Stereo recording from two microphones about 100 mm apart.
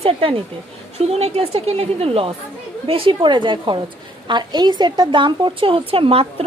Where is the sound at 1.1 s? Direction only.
90° right.